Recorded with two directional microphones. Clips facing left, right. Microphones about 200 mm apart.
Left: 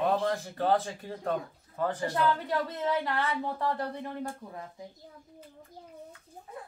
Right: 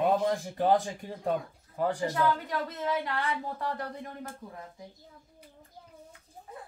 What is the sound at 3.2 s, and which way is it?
Speech, 35° left (ahead or behind).